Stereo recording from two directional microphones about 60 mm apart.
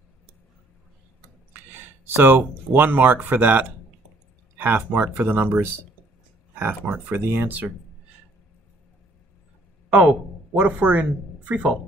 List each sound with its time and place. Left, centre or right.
1.5 s speech: right
9.9 s speech: right